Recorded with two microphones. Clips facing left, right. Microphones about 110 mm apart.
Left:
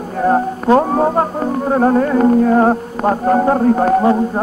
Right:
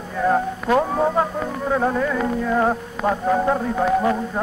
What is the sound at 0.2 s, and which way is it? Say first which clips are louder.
Speech: left 5 dB; 35° left (ahead or behind).